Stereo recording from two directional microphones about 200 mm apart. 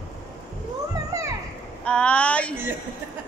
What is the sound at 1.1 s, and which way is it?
Children playing, 15° right (ahead or behind).